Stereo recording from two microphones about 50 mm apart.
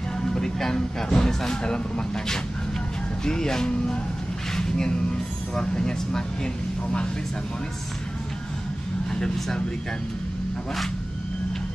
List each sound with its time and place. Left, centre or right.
0.2 s speech: centre
9.1 s speech: centre